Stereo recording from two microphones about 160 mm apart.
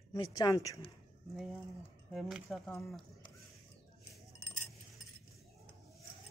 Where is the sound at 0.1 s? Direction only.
20° left (ahead or behind).